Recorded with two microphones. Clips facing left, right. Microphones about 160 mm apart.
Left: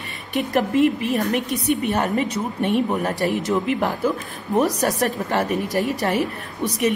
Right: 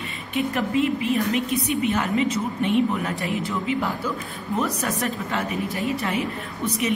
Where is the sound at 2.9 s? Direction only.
40° left (ahead or behind).